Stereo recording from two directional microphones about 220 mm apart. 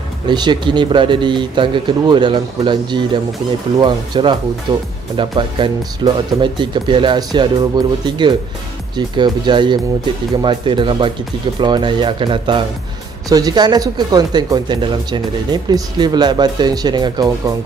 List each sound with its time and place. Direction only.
0.3 s speech: 20° right (ahead or behind)